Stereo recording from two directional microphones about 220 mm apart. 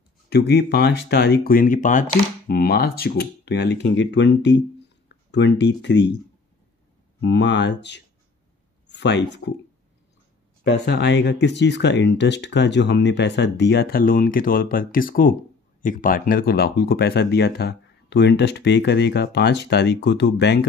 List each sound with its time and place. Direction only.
0.3 s speech: 50° left (ahead or behind)
7.2 s speech: 50° left (ahead or behind)
10.6 s speech: 50° left (ahead or behind)